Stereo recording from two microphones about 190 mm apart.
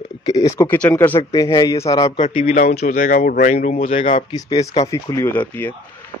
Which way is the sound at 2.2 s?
35° left (ahead or behind).